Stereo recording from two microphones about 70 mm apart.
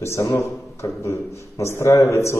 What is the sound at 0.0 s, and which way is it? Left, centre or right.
A man's voice, left.